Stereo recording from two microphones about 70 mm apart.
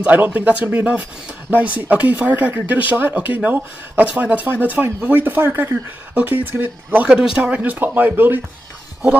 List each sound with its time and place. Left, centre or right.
0.0 s speech: right
7.1 s speech: centre; by 8.4 s right